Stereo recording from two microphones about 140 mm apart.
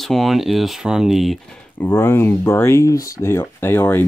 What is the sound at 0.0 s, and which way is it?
Speech, centre (ahead or behind).